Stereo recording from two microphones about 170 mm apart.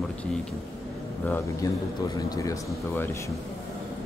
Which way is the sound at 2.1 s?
20° left (ahead or behind).